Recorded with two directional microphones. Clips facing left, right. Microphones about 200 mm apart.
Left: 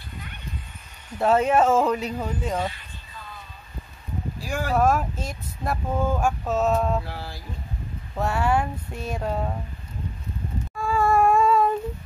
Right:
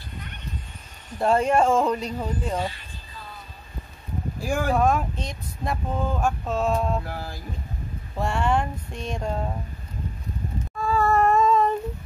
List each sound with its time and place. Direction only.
1.1 s speech: 5° left (ahead or behind)
4.4 s speech: 50° right (ahead or behind)
4.7 s speech: 5° left (ahead or behind)
7.1 s speech: 45° right (ahead or behind)
8.2 s speech: 5° left (ahead or behind)
10.8 s a sound: 10° left (ahead or behind)